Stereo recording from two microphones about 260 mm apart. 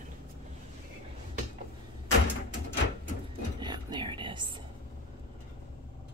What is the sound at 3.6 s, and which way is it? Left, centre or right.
Whispering, centre.